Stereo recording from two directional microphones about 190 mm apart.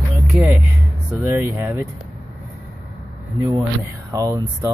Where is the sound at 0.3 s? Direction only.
5° right (ahead or behind).